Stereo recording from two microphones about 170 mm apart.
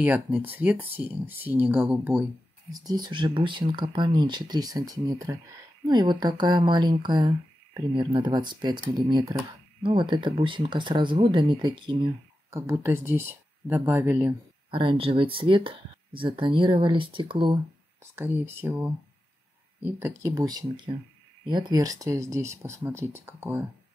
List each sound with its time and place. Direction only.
0.0 s speech: 10° right (ahead or behind)
2.7 s speech: 20° right (ahead or behind)
12.5 s speech: 15° right (ahead or behind)
14.7 s speech: 30° right (ahead or behind)
18.1 s speech: 10° right (ahead or behind)